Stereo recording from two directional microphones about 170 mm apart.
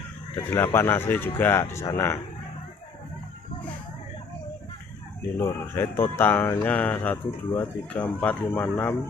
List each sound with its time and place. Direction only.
0.4 s speech: 15° left (ahead or behind)
5.4 s speech: 15° left (ahead or behind)